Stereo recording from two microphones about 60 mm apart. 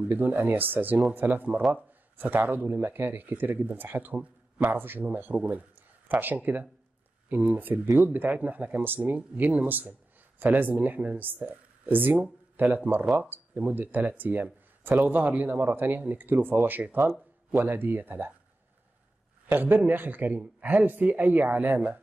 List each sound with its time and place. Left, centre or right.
0.1 s speech: right
13.0 s speech: centre
13.3 s speech: right
19.5 s speech: right